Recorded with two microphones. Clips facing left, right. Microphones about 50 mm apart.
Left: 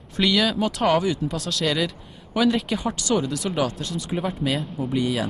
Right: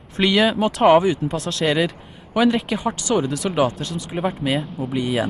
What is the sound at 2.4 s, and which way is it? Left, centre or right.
Speech, centre.